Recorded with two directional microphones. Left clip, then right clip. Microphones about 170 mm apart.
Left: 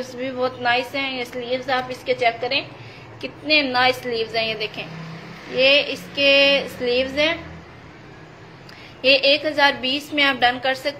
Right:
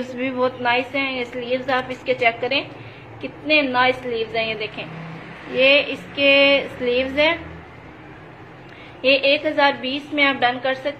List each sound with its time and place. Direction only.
0.2 s a woman's voice: centre (ahead or behind)
3.2 s a woman's voice: 15° left (ahead or behind)
9.0 s a woman's voice: 15° left (ahead or behind)